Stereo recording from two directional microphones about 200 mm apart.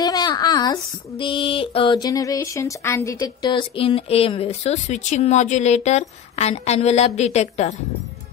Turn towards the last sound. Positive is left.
turn(degrees=35)  # may be behind; listen again after turning